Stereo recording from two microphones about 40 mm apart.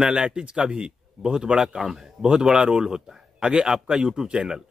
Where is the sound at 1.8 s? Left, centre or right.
Centre.